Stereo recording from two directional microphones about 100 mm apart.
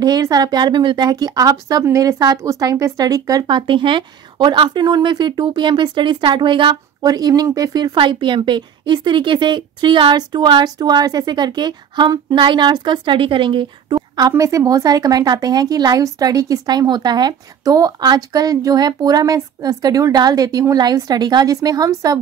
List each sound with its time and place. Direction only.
0.0 s speech: 40° right (ahead or behind)
3.4 s a woman's voice: 55° right (ahead or behind)
7.0 s speech: 40° right (ahead or behind)
8.0 s a woman's voice: 55° right (ahead or behind)
14.3 s speech: 35° right (ahead or behind)